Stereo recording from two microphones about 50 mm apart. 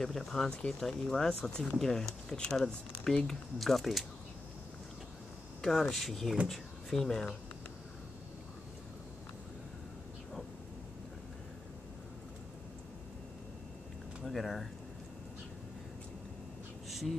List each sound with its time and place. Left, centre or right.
0.0 s speech: centre
0.5 s speech: left
1.1 s speech: centre
5.6 s speech: centre
14.2 s speech: centre